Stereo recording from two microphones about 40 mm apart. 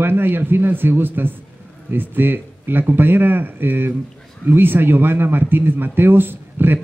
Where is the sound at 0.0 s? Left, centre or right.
Right.